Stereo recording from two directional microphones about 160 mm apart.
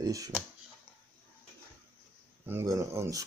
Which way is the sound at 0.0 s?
20° right (ahead or behind).